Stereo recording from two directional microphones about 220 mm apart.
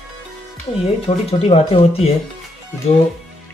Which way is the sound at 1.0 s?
25° left (ahead or behind).